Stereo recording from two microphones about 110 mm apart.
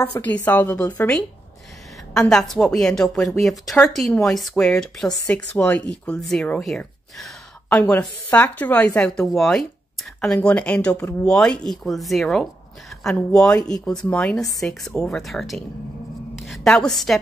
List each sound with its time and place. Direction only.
0.0 s speech: 15° left (ahead or behind)
2.1 s speech: 5° left (ahead or behind)
7.7 s a woman's voice: 15° left (ahead or behind)